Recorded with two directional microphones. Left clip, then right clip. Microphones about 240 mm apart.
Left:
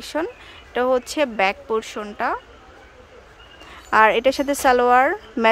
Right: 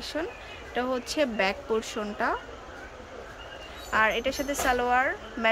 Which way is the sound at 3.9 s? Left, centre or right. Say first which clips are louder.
Left 10 dB; centre.